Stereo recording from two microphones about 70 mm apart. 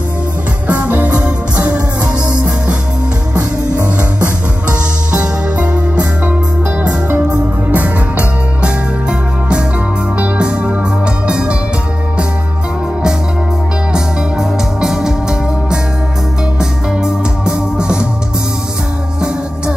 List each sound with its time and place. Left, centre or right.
0.7 s music: right
4.2 s music: centre
7.7 s music: right
10.1 s music: centre
13.9 s music: centre